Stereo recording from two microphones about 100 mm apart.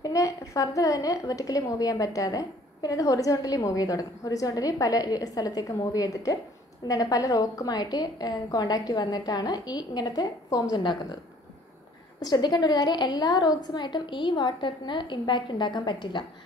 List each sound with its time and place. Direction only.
0.0 s a woman's voice: 35° left (ahead or behind)
12.2 s a woman's voice: 45° left (ahead or behind)